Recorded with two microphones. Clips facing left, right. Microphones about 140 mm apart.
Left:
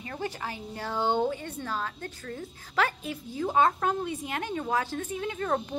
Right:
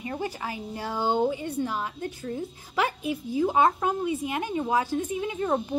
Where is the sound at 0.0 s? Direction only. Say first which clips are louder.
Right 3 dB; 15° right (ahead or behind).